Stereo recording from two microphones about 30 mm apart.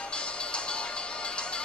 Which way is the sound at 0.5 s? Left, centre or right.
Left.